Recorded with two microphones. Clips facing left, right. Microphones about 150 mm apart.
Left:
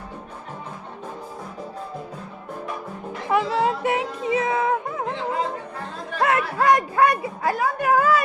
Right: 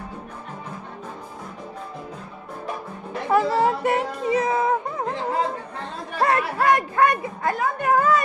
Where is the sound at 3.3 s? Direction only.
Centre (ahead or behind).